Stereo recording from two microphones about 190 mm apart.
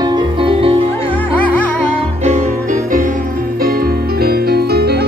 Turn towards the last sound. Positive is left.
turn(degrees=-55)  # may be behind; listen again after turning